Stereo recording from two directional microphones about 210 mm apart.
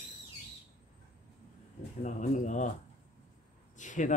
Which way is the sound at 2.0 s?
35° left (ahead or behind).